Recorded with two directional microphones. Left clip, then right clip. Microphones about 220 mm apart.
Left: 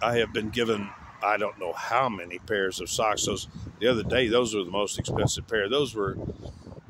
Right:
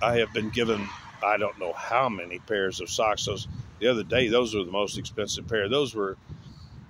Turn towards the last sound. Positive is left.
turn(degrees=0)  # may be behind; listen again after turning